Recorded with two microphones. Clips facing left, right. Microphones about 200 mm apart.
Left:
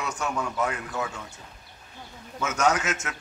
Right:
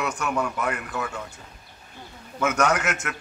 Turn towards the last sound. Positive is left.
turn(degrees=-60)  # may be behind; listen again after turning